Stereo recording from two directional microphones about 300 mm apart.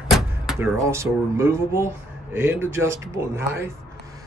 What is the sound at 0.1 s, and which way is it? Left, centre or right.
A man's voice, centre.